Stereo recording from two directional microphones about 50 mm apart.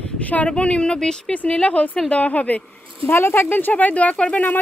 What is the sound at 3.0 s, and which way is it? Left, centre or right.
Speech, left.